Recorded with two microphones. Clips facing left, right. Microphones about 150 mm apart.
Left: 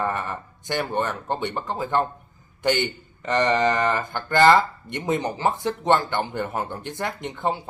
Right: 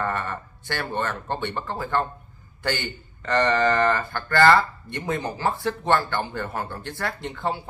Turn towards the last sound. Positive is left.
turn(degrees=20)  # may be behind; listen again after turning